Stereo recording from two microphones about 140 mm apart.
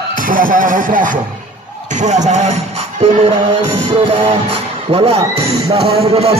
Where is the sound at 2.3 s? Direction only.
55° right (ahead or behind).